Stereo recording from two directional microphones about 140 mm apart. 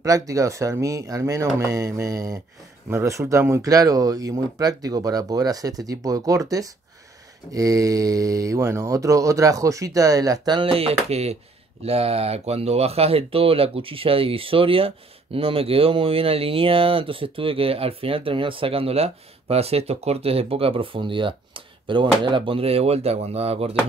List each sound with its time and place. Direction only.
0.0 s speech: 25° right (ahead or behind); by 23.8 s 45° right (ahead or behind)